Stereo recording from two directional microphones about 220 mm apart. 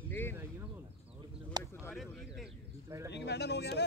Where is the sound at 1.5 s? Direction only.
20° right (ahead or behind).